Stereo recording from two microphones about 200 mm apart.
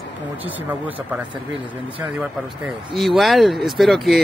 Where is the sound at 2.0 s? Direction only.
5° right (ahead or behind).